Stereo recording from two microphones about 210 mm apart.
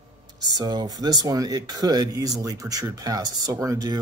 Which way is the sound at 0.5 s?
20° right (ahead or behind).